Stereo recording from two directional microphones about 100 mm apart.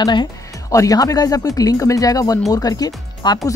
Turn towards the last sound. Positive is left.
turn(degrees=40)  # may be behind; listen again after turning